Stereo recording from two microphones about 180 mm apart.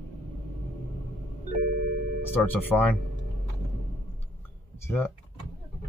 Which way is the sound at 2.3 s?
10° left (ahead or behind).